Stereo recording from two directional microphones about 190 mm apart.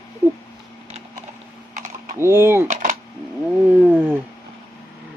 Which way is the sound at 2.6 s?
40° right (ahead or behind).